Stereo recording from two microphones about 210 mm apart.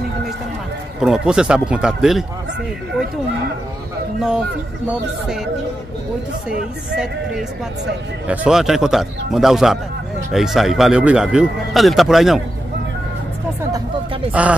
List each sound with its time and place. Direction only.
1.0 s a man's voice: 5° right (ahead or behind)
8.3 s a man's voice: 5° right (ahead or behind)
14.3 s speech: 5° right (ahead or behind)